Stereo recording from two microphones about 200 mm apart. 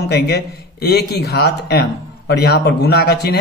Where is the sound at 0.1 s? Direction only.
50° left (ahead or behind).